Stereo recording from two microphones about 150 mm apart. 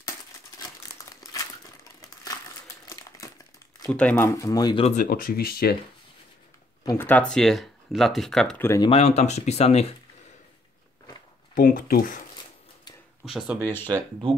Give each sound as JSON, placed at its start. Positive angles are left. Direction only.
{"t": 1.2, "sound": "crumpling", "side_deg": 25}
{"t": 2.0, "sound": "crushing", "side_deg": 20}
{"t": 2.9, "sound": "crumpling", "side_deg": 20}
{"t": 3.9, "sound": "speech", "side_deg": 10}
{"t": 4.3, "sound": "speech", "side_deg": 25}
{"t": 4.8, "sound": "speech", "side_deg": 60}
{"t": 7.0, "sound": "speech", "side_deg": 10}
{"t": 8.5, "sound": "speech", "side_deg": 15}
{"t": 8.8, "sound": "speech", "side_deg": 45}
{"t": 11.5, "sound": "speech", "side_deg": 70}
{"t": 13.2, "sound": "speech", "side_deg": 0}